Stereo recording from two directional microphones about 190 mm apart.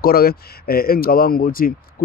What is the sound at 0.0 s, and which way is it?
Speech, 55° left (ahead or behind).